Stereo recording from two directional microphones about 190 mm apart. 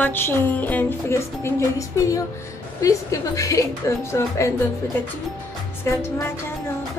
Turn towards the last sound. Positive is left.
turn(degrees=15)  # may be behind; listen again after turning